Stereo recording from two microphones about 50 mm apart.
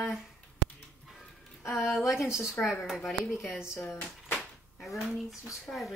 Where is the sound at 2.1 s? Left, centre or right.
Centre.